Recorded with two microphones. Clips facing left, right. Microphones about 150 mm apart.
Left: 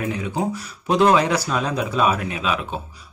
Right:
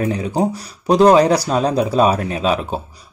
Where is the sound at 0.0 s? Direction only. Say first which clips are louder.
Right 6 dB; 35° right (ahead or behind).